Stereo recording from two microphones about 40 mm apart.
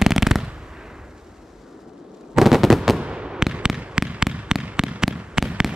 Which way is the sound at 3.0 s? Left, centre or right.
Right.